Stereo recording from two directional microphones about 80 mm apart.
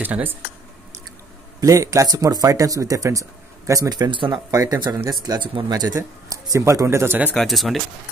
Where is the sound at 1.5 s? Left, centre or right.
Right.